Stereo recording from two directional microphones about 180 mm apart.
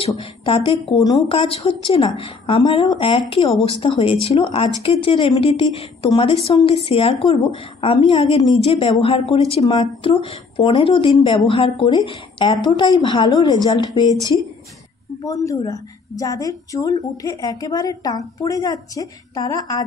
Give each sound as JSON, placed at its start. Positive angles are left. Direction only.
{"t": 0.0, "sound": "a woman's voice", "side_deg": 30}
{"t": 15.2, "sound": "a woman's voice", "side_deg": 20}